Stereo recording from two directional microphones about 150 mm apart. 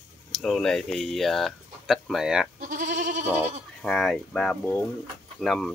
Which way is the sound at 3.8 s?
5° left (ahead or behind).